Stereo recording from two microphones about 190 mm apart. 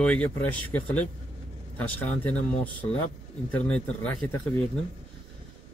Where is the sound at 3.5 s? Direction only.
5° left (ahead or behind).